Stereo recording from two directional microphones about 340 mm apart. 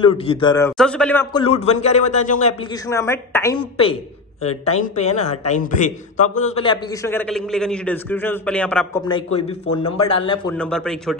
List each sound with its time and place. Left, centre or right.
0.0 s a man's voice: centre
4.4 s a man's voice: centre
10.6 s a man's voice: centre